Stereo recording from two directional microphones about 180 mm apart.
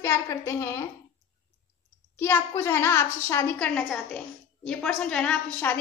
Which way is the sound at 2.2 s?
15° left (ahead or behind).